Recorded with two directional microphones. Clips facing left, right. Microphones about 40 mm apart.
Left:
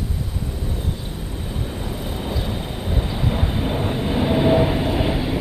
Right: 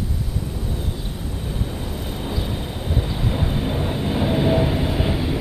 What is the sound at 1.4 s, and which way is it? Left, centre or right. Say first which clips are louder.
Vehicle: even; centre.